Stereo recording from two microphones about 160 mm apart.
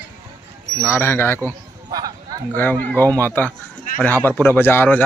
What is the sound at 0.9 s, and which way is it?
Speech, 15° left (ahead or behind).